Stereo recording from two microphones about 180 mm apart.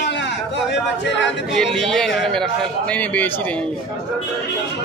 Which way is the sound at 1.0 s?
80° left.